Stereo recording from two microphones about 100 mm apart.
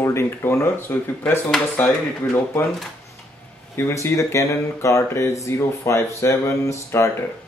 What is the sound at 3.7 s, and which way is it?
Speech, 30° left (ahead or behind).